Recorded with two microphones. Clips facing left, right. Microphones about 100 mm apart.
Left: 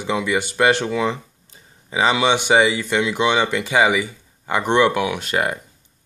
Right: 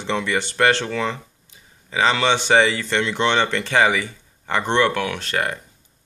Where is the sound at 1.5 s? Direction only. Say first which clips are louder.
Left 3 dB; 40° left (ahead or behind).